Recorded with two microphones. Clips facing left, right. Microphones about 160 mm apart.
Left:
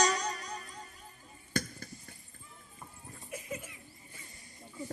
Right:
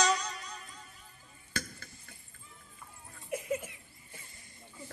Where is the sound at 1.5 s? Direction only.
40° left (ahead or behind).